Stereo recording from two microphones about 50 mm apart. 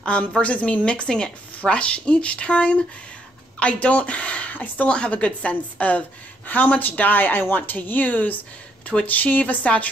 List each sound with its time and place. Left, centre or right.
0.4 s speech: left
4.8 s a woman's voice: left